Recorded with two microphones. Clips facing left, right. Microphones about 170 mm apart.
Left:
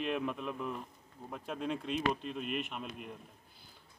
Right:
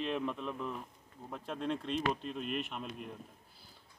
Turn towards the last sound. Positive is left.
turn(degrees=5)  # may be behind; listen again after turning